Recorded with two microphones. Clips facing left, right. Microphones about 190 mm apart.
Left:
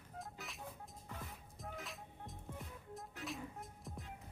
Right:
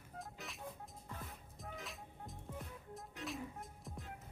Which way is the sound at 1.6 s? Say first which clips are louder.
Left 1 dB; centre (ahead or behind).